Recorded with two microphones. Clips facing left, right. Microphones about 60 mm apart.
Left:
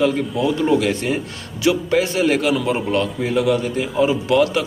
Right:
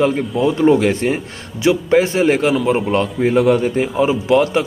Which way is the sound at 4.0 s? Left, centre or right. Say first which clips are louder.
Right 1 dB; right.